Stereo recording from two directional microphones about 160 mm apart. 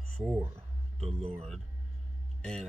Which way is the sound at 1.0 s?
40° right (ahead or behind).